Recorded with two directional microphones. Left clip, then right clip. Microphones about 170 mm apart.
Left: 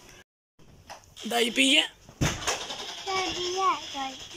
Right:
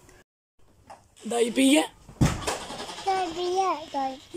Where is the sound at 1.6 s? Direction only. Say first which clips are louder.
Even; 30° right (ahead or behind).